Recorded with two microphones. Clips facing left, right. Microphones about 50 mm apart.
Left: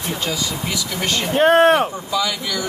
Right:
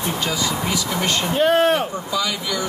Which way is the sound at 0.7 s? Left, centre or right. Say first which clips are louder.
Right 2 dB; right.